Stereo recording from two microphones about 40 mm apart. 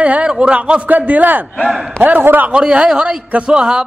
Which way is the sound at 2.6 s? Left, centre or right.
Right.